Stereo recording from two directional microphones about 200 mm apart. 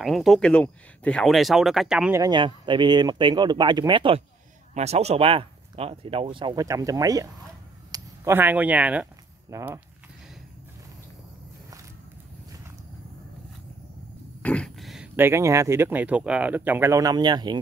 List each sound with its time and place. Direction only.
0.0 s speech: centre (ahead or behind)
2.1 s speech: 20° right (ahead or behind)
14.4 s speech: 5° left (ahead or behind); by 17.6 s 20° right (ahead or behind)